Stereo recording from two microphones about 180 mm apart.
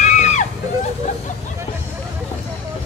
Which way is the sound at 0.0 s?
40° left (ahead or behind).